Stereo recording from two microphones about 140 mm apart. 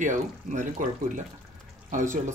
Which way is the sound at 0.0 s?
65° right (ahead or behind).